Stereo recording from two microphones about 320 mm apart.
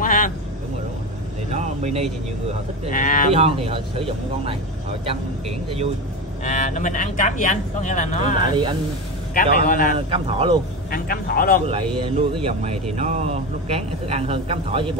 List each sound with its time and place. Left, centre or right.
0.0 s vehicle: left
1.5 s vehicle: centre
2.9 s speech: left
3.3 s speech: centre
6.4 s speech: left
9.9 s speech: centre
10.9 s speech: left
11.6 s speech: centre